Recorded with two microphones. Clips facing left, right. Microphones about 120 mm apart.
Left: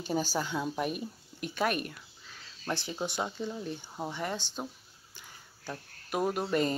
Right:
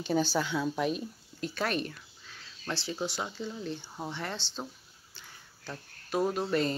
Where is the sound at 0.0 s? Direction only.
10° left (ahead or behind).